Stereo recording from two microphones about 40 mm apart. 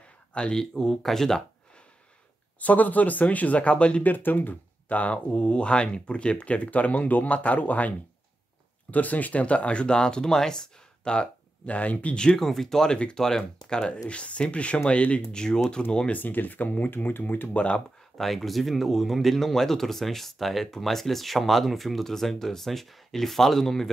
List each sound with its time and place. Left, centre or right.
0.3 s speech: left
0.7 s speech: centre
2.6 s speech: left
4.0 s speech: left
8.9 s speech: left
11.7 s speech: left
12.4 s speech: centre; by 15.2 s left
15.3 s speech: centre
16.1 s speech: left
16.9 s speech: left
17.2 s speech: left
18.1 s speech: centre